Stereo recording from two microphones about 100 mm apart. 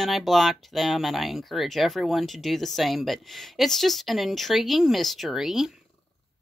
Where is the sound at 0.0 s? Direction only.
Centre (ahead or behind).